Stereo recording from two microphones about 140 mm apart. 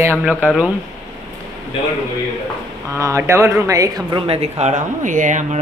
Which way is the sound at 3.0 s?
20° right (ahead or behind).